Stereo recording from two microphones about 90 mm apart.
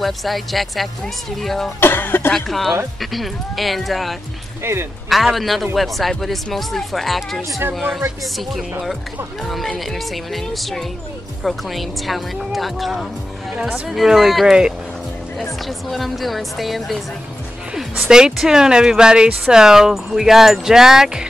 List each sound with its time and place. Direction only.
0.0 s speech: centre (ahead or behind)
1.8 s speech: 25° left (ahead or behind)
2.3 s speech: centre (ahead or behind)
4.6 s speech: 25° right (ahead or behind)
5.1 s speech: centre (ahead or behind)
9.5 s speech: centre (ahead or behind)
15.9 s speech: centre (ahead or behind)